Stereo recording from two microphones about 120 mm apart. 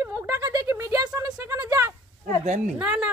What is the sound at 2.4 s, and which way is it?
Speech, 90° right.